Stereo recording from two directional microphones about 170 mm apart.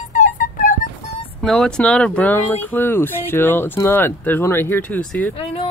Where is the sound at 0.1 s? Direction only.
50° left (ahead or behind).